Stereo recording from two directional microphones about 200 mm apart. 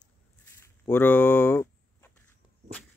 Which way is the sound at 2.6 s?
60° right (ahead or behind).